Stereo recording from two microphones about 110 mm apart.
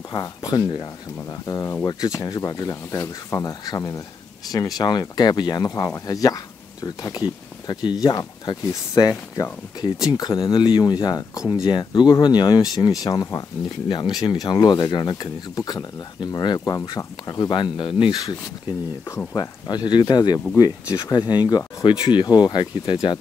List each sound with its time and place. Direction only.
0.1 s speech: 40° left (ahead or behind)
1.5 s speech: 30° left (ahead or behind); by 18.1 s 50° left (ahead or behind)
19.3 s speech: 40° left (ahead or behind)